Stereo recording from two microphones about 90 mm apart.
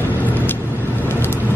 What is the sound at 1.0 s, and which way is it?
Vehicle, 25° left (ahead or behind).